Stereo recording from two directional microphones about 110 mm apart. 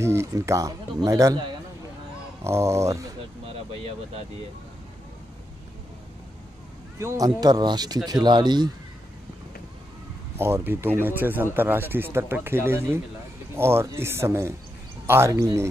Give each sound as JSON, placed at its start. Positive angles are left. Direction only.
{"t": 0.0, "sound": "speech", "side_deg": -25}
{"t": 2.4, "sound": "speech", "side_deg": -25}
{"t": 7.0, "sound": "speech", "side_deg": -30}
{"t": 10.3, "sound": "speech", "side_deg": -20}